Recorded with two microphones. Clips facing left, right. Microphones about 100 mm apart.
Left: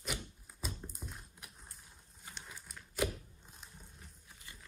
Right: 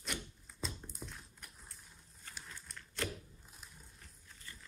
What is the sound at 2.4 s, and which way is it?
Crumpling, 10° left (ahead or behind).